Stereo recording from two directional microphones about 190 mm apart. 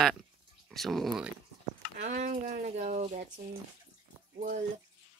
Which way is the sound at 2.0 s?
40° right (ahead or behind).